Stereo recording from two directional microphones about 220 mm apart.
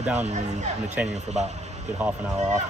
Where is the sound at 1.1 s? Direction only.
30° right (ahead or behind).